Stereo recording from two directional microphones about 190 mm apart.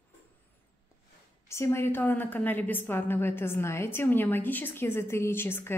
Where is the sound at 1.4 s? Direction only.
15° left (ahead or behind).